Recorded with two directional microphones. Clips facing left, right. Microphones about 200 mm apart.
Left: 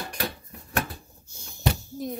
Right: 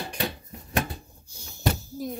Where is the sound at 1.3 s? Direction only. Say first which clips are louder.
Even; 5° right (ahead or behind).